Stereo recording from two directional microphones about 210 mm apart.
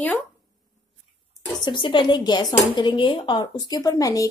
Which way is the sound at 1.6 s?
25° left (ahead or behind).